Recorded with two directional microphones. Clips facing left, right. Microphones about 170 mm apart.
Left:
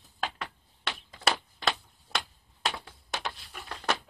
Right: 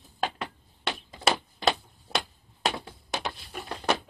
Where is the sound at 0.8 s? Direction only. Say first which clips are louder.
Right 3 dB; 15° right (ahead or behind).